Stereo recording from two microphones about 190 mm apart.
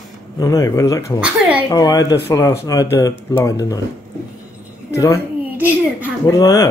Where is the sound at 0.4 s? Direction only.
15° left (ahead or behind).